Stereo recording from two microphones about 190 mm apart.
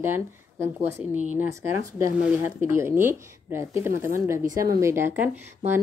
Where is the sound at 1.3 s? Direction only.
10° right (ahead or behind).